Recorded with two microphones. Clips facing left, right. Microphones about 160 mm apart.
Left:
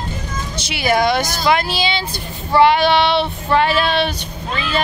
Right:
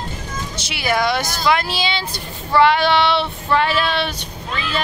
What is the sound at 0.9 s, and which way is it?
A woman's voice, 20° left (ahead or behind).